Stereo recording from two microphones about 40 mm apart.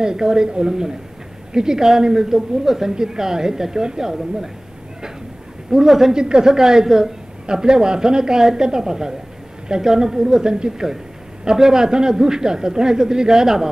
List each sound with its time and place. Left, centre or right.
0.0 s a man's voice: centre
5.7 s a man's voice: centre
6.1 s a man's voice: right